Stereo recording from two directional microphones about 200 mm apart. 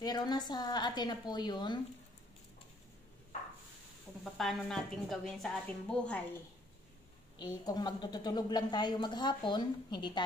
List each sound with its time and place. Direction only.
0.0 s a woman's voice: 20° left (ahead or behind)
4.2 s a woman's voice: centre (ahead or behind)
7.3 s a woman's voice: 20° left (ahead or behind)